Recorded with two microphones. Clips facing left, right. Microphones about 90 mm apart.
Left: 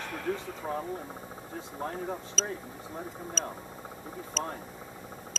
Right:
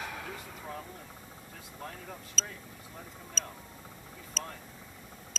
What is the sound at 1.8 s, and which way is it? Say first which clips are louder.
Speech: left 9 dB; 35° left (ahead or behind).